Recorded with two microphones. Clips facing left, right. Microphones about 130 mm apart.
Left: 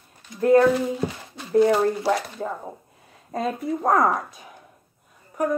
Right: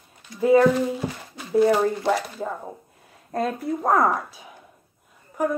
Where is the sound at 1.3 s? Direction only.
Centre (ahead or behind).